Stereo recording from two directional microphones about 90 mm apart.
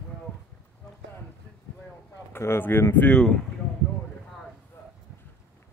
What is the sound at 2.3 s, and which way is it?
Speech, 25° left (ahead or behind).